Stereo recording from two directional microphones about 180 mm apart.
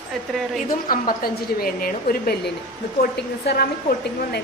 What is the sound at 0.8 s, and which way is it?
A woman's voice, 50° left (ahead or behind).